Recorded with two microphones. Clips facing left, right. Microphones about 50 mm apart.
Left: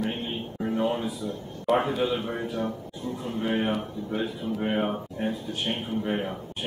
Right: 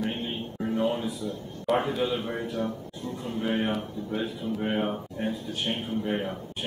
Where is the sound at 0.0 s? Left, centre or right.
Centre.